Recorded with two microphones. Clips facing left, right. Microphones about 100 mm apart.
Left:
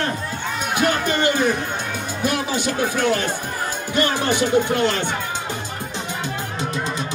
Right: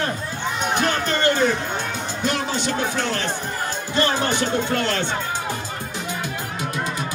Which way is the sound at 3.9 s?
15° left (ahead or behind).